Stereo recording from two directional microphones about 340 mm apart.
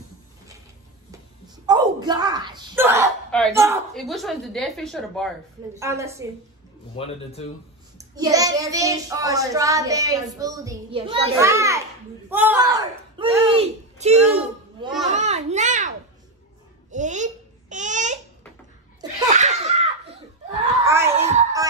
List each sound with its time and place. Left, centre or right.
1.7 s a woman's voice: centre
7.0 s speech: centre
8.0 s a child's voice: centre
16.9 s babbling: right
18.9 s laughter: centre
20.8 s a sound: centre
21.2 s music: centre